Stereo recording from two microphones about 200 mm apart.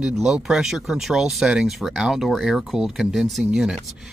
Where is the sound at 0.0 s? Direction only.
5° right (ahead or behind).